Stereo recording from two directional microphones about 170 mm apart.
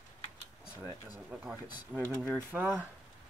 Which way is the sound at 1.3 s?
10° right (ahead or behind).